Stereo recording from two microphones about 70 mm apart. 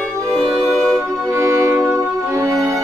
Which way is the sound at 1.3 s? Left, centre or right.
Right.